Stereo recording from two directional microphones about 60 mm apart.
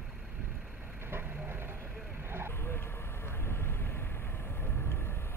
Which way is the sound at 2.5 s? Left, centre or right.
Left.